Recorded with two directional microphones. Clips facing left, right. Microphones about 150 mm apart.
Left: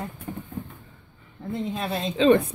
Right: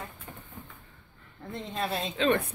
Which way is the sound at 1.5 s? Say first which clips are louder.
Left 4 dB; centre (ahead or behind).